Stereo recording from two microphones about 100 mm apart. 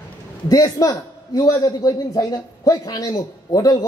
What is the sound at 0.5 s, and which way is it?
A man's voice, 40° left (ahead or behind).